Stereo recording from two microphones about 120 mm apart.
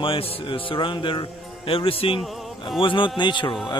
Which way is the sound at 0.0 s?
45° left (ahead or behind).